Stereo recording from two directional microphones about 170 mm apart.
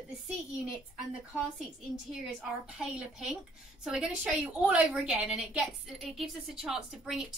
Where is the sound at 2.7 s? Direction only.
5° right (ahead or behind).